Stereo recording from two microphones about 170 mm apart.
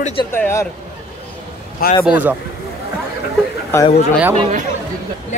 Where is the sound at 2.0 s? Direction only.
10° right (ahead or behind).